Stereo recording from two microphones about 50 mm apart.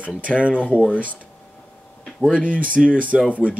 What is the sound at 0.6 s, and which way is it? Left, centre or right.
Speech, right.